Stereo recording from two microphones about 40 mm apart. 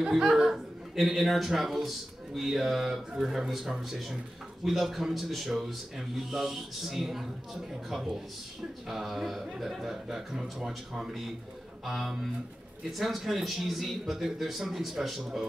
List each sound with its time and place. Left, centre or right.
0.2 s a man's voice: centre
0.9 s a man's voice: centre
4.6 s a man's voice: centre